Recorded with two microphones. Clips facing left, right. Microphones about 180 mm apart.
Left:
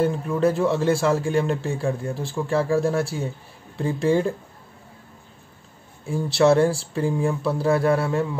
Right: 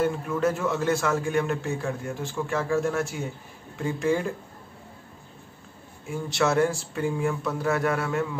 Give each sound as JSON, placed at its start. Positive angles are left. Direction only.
{"t": 0.0, "sound": "a man's voice", "side_deg": 35}
{"t": 6.0, "sound": "a man's voice", "side_deg": 30}